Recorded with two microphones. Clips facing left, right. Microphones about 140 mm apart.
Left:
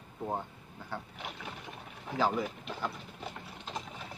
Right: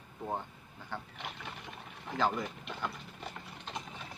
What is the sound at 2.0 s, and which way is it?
Speech, 5° left (ahead or behind).